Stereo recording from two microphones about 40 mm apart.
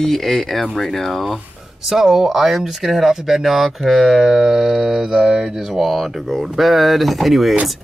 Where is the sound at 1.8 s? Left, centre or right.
Centre.